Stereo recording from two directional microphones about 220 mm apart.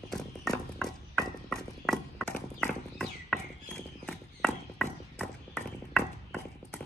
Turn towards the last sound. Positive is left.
turn(degrees=5)  # may be behind; listen again after turning